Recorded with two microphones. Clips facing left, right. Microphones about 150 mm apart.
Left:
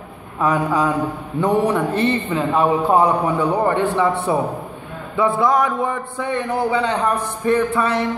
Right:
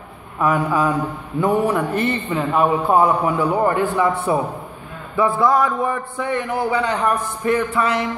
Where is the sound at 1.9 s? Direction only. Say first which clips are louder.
Left 2 dB; 25° left (ahead or behind).